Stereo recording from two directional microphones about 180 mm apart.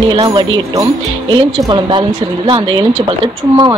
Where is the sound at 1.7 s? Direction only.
25° right (ahead or behind).